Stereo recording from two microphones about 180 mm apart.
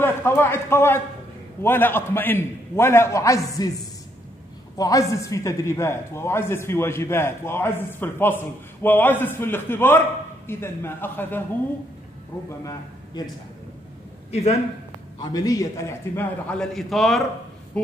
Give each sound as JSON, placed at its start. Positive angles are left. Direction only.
{"t": 0.0, "sound": "a man's voice", "side_deg": 10}
{"t": 4.7, "sound": "a woman's voice", "side_deg": 20}
{"t": 12.4, "sound": "a man's voice", "side_deg": 20}
{"t": 14.3, "sound": "a man's voice", "side_deg": 35}
{"t": 15.1, "sound": "a woman's voice", "side_deg": 20}